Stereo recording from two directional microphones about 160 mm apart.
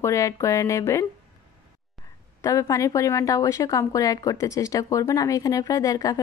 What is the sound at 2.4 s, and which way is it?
A woman's voice, 20° left (ahead or behind).